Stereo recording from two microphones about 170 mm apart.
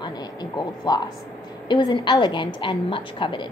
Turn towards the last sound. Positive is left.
turn(degrees=30)  # may be behind; listen again after turning